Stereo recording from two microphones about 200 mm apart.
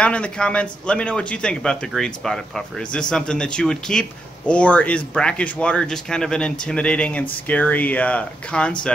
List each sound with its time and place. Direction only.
0.0 s speech: 5° left (ahead or behind)